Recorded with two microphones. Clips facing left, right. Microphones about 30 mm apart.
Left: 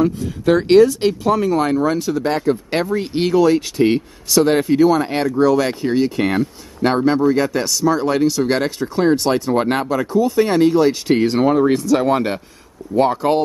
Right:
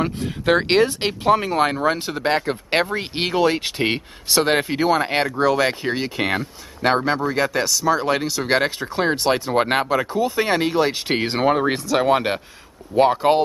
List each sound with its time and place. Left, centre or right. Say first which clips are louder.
0.0 s speech: left 5 dB; right
11.8 s speech: left 2 dB; centre